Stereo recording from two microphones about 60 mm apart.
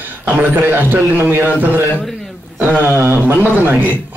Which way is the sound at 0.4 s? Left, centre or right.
Right.